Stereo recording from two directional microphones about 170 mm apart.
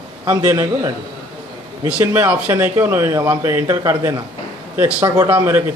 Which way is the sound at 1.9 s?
10° right (ahead or behind).